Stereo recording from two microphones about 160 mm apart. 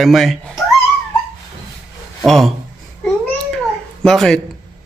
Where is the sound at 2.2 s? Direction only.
Centre (ahead or behind).